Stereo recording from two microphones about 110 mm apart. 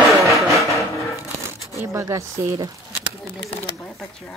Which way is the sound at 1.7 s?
25° right (ahead or behind).